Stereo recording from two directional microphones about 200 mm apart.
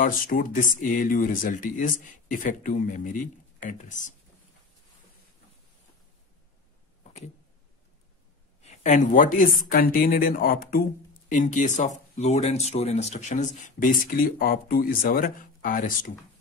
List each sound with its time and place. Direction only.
0.0 s speech: 45° left (ahead or behind)
8.6 s speech: 35° left (ahead or behind)